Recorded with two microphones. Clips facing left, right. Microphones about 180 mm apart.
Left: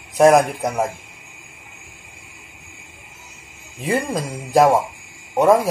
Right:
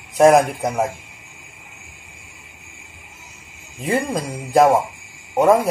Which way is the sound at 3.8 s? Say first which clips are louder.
Even; centre (ahead or behind).